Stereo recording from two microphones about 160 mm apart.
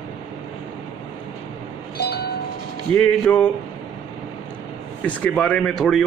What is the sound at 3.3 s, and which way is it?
Speech, 10° left (ahead or behind).